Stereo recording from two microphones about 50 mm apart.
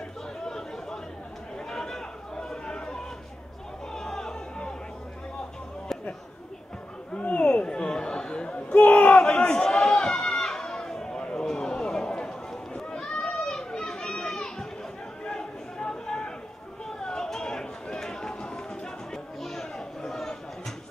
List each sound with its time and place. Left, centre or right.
0.5 s chatter: centre
1.7 s a sound: centre
7.2 s chatter: left
8.8 s battle cry: left
9.2 s chatter: centre
11.4 s run: centre
13.5 s children playing: centre
13.8 s a sound: centre
15.2 s chatter: centre
17.0 s run: centre
19.4 s chatter: centre